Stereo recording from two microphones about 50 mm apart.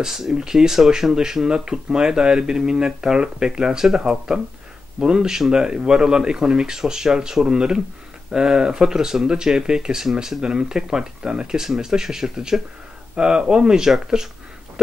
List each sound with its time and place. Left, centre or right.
0.0 s speech: centre